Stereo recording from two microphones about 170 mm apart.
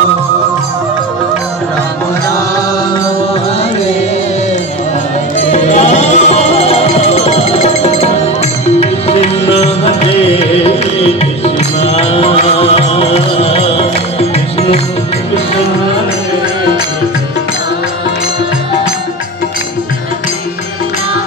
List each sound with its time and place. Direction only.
5.5 s music: 40° left (ahead or behind)